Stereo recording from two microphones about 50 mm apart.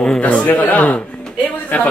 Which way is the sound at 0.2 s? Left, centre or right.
Left.